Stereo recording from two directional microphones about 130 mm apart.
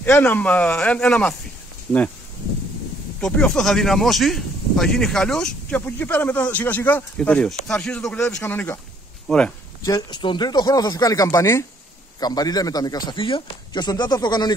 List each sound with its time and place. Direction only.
0.0 s speech: 15° left (ahead or behind)
3.2 s speech: 5° left (ahead or behind)
9.3 s speech: 5° left (ahead or behind)
9.8 s a man's voice: 30° left (ahead or behind)